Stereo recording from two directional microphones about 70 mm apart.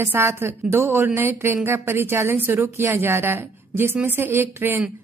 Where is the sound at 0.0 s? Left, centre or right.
Right.